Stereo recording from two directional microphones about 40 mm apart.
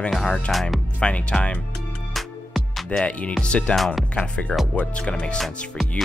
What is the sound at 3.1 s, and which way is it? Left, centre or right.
Speech, left.